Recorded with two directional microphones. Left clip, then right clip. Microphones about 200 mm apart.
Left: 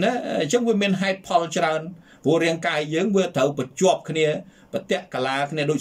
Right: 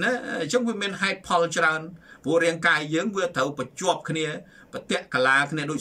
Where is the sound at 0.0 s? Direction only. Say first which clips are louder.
Left 3 dB; 15° left (ahead or behind).